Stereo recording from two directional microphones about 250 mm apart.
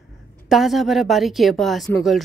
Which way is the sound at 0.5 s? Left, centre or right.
Centre.